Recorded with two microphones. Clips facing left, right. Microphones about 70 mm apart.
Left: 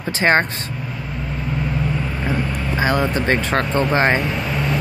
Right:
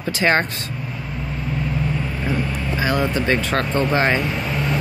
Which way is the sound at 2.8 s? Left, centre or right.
Left.